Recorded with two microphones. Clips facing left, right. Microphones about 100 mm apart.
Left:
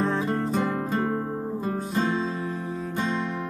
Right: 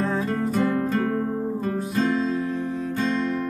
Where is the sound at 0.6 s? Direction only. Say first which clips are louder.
Right 3 dB; 15° left (ahead or behind).